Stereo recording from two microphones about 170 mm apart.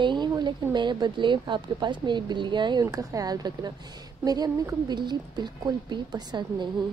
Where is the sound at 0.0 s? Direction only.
25° right (ahead or behind).